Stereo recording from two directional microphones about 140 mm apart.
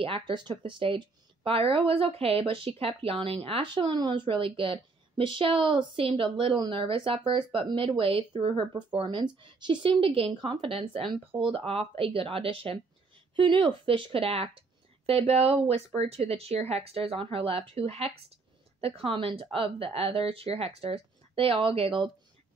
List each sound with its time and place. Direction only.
0.0 s a woman's voice: 35° right (ahead or behind)